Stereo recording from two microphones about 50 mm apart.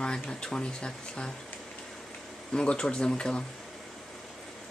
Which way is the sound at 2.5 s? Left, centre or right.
Centre.